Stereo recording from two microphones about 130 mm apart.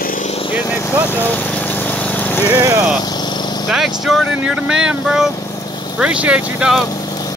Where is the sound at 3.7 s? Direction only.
5° right (ahead or behind).